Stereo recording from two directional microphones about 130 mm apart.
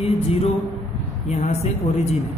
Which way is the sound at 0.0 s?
45° left (ahead or behind).